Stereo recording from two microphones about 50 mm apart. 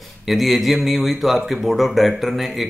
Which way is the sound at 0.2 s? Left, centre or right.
Centre.